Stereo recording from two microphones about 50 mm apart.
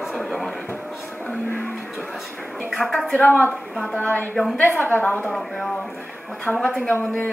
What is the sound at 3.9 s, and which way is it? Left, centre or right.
Speech, left.